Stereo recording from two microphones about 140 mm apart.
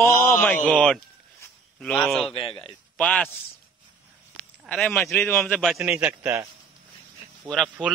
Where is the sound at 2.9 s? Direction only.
10° left (ahead or behind).